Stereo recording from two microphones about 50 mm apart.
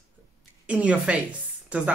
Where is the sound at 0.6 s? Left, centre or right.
Right.